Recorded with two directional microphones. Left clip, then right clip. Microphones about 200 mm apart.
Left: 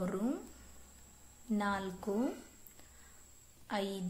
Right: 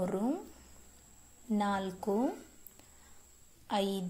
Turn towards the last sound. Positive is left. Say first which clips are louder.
# right 5 dB
turn(degrees=-20)  # may be behind; listen again after turning